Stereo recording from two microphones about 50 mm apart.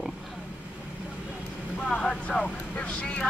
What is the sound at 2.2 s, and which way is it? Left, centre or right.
Speech, left.